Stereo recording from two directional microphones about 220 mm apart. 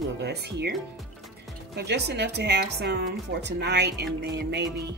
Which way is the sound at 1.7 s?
50° right (ahead or behind).